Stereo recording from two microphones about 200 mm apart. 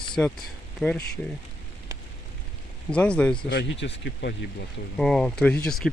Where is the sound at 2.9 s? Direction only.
5° left (ahead or behind).